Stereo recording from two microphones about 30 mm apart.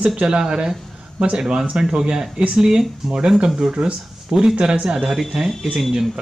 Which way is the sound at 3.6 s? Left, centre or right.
Right.